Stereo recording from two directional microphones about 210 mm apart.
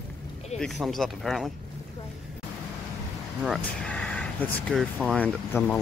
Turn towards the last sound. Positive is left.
turn(degrees=5)  # may be behind; listen again after turning